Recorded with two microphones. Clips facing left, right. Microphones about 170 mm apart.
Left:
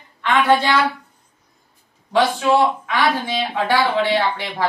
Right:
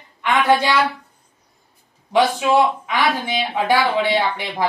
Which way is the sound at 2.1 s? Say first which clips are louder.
Right 1 dB; 15° right (ahead or behind).